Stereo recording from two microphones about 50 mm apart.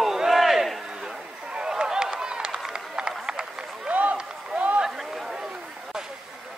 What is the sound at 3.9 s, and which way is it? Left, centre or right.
Run, right.